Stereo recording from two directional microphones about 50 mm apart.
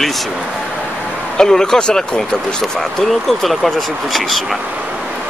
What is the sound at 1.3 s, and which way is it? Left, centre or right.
Speech, centre.